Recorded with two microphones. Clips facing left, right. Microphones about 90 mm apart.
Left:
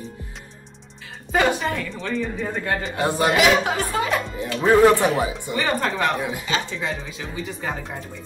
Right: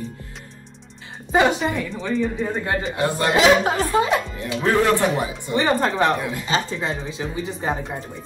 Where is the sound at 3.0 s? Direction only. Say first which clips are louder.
Left 2 dB; 20° left (ahead or behind).